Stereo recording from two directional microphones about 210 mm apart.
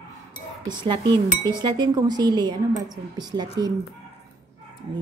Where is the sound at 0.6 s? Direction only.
20° right (ahead or behind).